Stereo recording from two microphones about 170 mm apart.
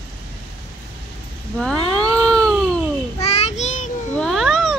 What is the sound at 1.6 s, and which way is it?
Cat, 5° left (ahead or behind).